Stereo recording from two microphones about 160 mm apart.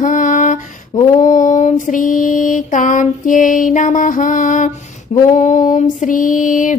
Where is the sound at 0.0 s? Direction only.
50° left (ahead or behind).